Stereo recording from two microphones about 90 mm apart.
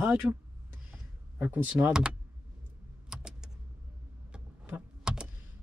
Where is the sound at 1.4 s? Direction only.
20° right (ahead or behind).